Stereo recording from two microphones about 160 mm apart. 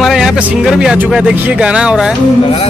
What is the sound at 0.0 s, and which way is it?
Speech, centre (ahead or behind).